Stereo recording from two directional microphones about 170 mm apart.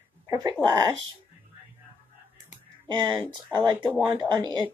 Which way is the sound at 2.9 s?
25° right (ahead or behind).